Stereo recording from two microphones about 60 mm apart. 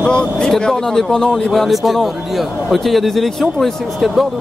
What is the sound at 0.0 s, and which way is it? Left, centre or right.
Speech, centre.